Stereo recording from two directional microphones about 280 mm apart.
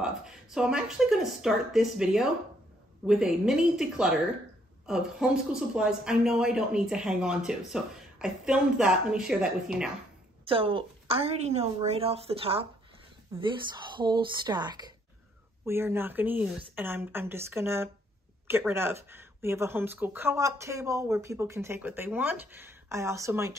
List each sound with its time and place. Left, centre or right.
0.0 s speech: centre
10.4 s a woman's voice: centre